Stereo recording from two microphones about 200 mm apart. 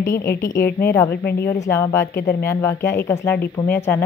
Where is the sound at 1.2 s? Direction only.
50° left (ahead or behind).